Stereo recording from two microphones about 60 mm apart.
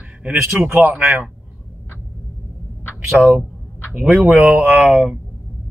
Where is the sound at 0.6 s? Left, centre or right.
Right.